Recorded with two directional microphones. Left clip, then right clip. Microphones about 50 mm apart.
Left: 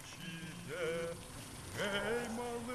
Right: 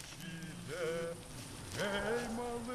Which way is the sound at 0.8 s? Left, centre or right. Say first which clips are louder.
Even; centre.